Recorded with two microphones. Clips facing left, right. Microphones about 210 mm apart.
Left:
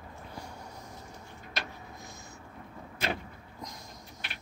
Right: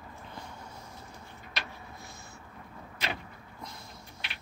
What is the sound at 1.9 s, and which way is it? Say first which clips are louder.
Vehicle: left 1 dB; 15° left (ahead or behind).